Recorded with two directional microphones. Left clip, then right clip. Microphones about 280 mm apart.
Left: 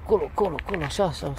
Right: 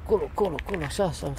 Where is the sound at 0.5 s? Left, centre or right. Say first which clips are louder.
Left 2 dB; centre.